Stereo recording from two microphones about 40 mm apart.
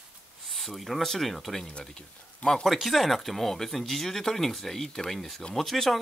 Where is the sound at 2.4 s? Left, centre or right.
Left.